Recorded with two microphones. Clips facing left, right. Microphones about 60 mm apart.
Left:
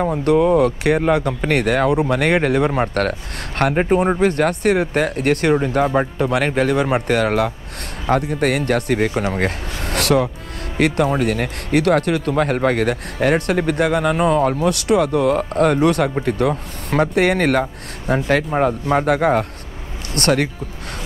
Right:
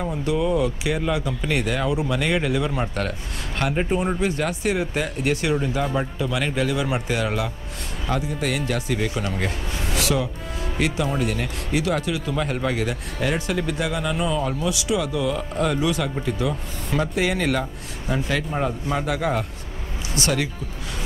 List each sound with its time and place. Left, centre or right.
0.0 s speech: left